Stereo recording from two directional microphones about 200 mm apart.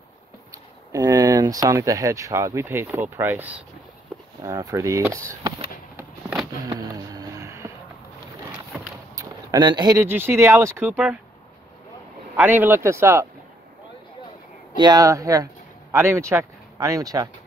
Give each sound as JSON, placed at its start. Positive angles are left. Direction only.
{"t": 0.9, "sound": "speech", "side_deg": -15}
{"t": 6.6, "sound": "a sound", "side_deg": -20}
{"t": 9.1, "sound": "speech", "side_deg": -20}
{"t": 12.4, "sound": "speech", "side_deg": -10}
{"t": 14.8, "sound": "speech", "side_deg": -20}